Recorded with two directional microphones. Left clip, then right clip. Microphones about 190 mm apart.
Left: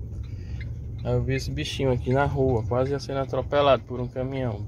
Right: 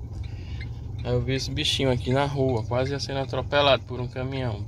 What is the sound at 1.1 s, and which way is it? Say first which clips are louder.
Speech: even; 15° left (ahead or behind).